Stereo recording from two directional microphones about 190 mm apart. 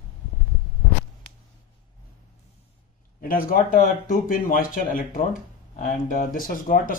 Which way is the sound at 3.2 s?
50° left (ahead or behind).